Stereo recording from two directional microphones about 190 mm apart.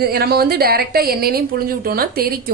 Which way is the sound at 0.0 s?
55° right (ahead or behind).